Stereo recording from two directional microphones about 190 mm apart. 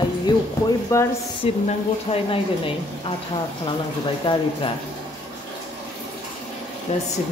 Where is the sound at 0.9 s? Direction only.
15° left (ahead or behind).